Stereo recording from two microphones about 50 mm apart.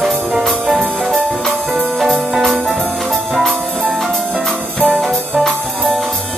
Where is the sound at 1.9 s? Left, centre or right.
Centre.